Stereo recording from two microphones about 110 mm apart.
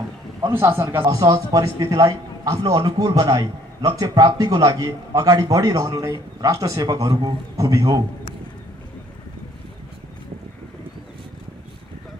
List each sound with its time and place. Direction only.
0.5 s speech: 20° right (ahead or behind)
1.1 s a man's voice: 35° right (ahead or behind)